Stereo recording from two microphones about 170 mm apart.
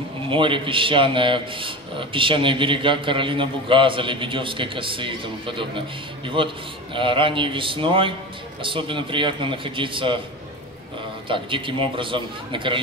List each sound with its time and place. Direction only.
0.3 s a man's voice: 30° right (ahead or behind)
11.2 s a man's voice: 30° right (ahead or behind)